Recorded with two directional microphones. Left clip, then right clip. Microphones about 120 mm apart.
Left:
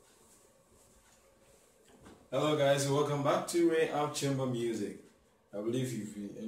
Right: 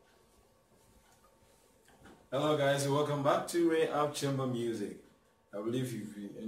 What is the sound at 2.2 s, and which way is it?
A man's voice, centre (ahead or behind).